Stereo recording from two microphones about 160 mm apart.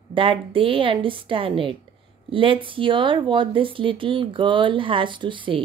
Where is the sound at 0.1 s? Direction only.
35° right (ahead or behind).